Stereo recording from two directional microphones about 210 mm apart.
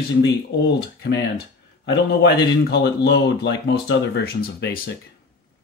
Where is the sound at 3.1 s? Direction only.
55° left (ahead or behind).